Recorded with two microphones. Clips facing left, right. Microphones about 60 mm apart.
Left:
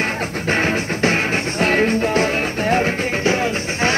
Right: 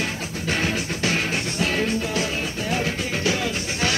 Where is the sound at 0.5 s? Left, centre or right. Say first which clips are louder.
Left 5 dB; left.